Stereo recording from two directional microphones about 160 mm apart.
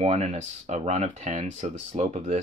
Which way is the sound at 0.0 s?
45° right (ahead or behind).